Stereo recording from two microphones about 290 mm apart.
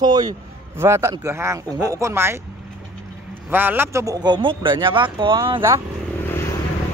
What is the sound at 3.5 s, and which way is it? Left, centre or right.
Speech, centre.